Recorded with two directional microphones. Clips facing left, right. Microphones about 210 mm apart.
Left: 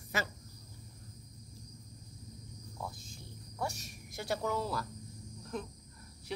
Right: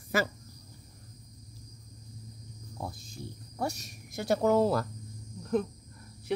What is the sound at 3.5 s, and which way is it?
Speech, 40° right (ahead or behind).